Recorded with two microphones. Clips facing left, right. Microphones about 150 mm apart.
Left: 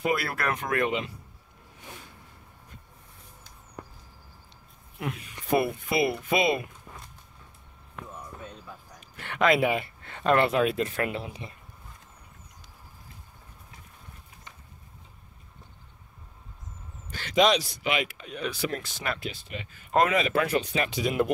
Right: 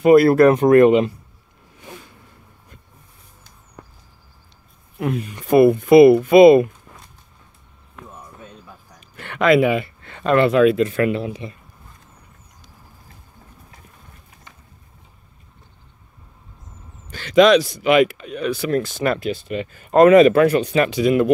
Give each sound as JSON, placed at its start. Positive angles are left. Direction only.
{"t": 0.0, "sound": "speech", "side_deg": -45}
{"t": 0.7, "sound": "speech", "side_deg": -50}
{"t": 4.9, "sound": "speech", "side_deg": -50}
{"t": 9.1, "sound": "speech", "side_deg": -65}
{"t": 17.1, "sound": "a man's voice", "side_deg": -90}
{"t": 17.8, "sound": "speech", "side_deg": -55}